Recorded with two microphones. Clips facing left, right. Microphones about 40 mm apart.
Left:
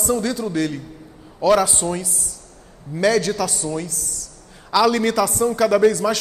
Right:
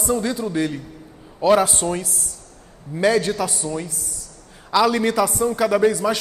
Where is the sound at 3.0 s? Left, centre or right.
Right.